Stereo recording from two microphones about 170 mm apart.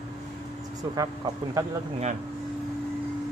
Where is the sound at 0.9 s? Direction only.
20° right (ahead or behind).